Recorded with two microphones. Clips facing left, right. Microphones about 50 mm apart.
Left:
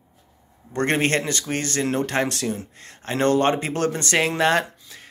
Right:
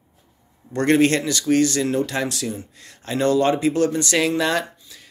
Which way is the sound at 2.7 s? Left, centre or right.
Left.